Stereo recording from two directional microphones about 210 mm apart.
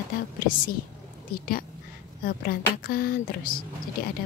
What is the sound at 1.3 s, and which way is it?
A woman's voice, 40° left (ahead or behind).